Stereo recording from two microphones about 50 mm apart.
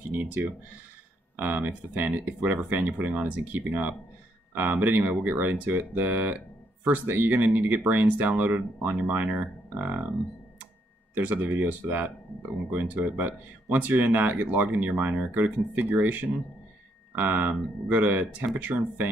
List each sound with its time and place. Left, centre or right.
0.2 s speech: right
11.1 s speech: right